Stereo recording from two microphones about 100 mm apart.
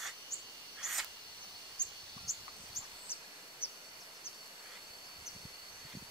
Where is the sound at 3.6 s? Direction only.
70° left (ahead or behind).